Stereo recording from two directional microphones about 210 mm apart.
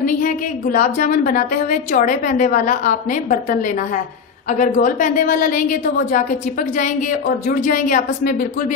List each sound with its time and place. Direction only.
0.0 s a woman's voice: 40° left (ahead or behind)